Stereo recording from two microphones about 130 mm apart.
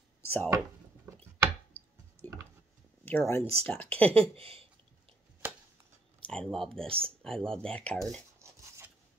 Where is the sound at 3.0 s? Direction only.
15° left (ahead or behind).